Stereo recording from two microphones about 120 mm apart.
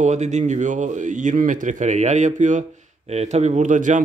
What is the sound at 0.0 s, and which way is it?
Speech, 75° right (ahead or behind).